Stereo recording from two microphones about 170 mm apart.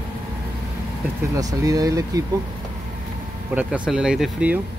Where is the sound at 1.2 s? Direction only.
20° right (ahead or behind).